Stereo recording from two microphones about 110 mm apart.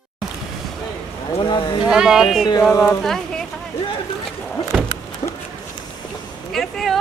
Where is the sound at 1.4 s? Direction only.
45° left (ahead or behind).